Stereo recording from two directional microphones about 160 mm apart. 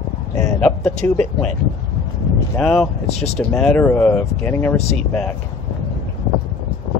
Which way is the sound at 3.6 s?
Centre (ahead or behind).